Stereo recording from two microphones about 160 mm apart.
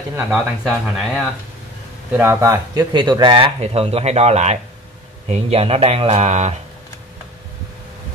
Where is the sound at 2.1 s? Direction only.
15° right (ahead or behind); by 6.5 s 45° right (ahead or behind).